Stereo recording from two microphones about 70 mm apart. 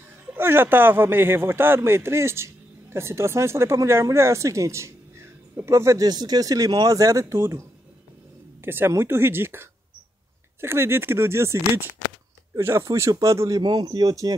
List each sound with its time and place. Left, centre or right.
0.4 s speech: right
6.0 s speech: right
7.3 s speech: right
13.6 s speech: right